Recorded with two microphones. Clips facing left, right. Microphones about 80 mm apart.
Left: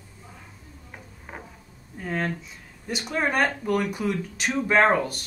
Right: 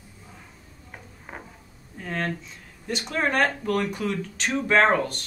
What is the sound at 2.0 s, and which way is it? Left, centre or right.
Speech, centre.